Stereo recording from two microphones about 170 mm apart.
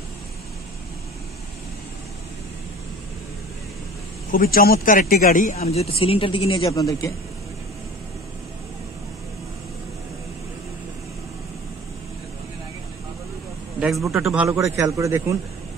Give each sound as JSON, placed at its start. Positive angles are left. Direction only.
{"t": 4.3, "sound": "a man's voice", "side_deg": 60}
{"t": 6.7, "sound": "a man's voice", "side_deg": 20}
{"t": 13.7, "sound": "a man's voice", "side_deg": 0}